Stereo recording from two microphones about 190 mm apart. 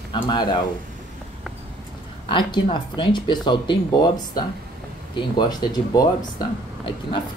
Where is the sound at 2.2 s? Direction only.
25° left (ahead or behind).